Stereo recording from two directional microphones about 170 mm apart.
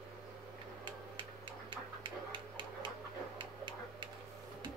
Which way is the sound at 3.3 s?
30° right (ahead or behind).